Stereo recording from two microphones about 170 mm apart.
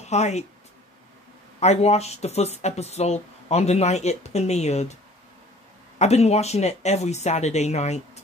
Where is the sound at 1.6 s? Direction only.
40° left (ahead or behind).